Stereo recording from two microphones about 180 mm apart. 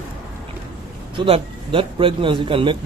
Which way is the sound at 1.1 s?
30° right (ahead or behind).